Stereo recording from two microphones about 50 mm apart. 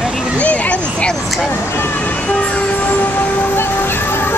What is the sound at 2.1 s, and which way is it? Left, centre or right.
Vehicle, left.